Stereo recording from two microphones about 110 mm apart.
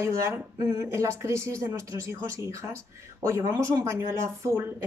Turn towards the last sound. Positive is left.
turn(degrees=-25)  # may be behind; listen again after turning